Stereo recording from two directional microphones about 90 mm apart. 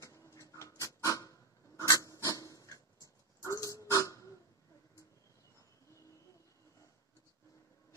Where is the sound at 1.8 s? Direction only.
40° left (ahead or behind).